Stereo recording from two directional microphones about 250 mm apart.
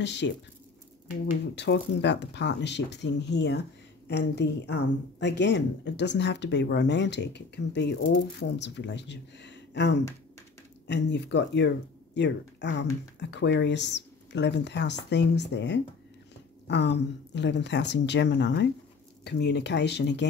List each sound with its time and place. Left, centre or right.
0.0 s speech: left